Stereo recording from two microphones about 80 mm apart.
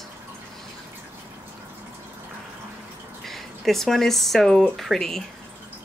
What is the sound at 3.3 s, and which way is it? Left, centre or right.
Speech, centre.